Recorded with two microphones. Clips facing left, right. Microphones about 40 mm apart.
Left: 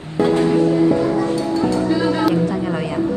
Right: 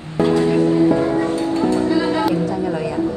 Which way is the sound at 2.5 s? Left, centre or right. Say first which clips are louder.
Right 1 dB; left.